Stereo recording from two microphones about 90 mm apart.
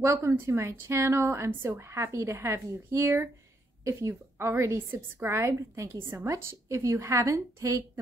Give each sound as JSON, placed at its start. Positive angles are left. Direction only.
{"t": 0.0, "sound": "a woman's voice", "side_deg": -30}